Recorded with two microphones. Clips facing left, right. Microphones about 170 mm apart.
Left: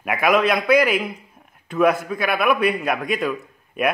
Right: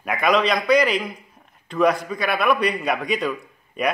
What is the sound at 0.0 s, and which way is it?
A man's voice, 5° left (ahead or behind).